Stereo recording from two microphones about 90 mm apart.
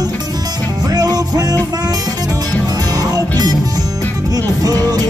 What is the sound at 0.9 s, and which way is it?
Music, 45° right (ahead or behind).